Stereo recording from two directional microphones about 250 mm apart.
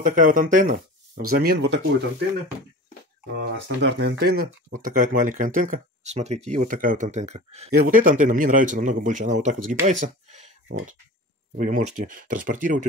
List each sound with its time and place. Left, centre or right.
0.0 s speech: right
3.6 s speech: right
11.5 s speech: right